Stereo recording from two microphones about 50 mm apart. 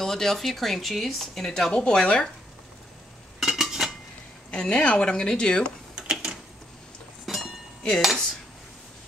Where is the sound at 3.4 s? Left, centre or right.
Centre.